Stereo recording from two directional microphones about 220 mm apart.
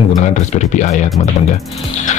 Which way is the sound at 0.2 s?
30° left (ahead or behind).